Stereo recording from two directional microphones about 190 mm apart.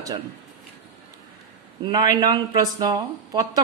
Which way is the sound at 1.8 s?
20° right (ahead or behind).